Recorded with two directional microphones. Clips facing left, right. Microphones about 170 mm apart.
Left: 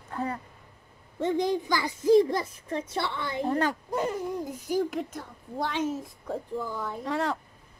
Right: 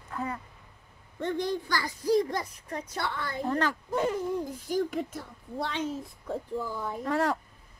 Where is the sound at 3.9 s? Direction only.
Centre (ahead or behind).